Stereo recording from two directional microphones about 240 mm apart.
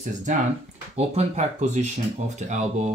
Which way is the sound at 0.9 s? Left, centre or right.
Right.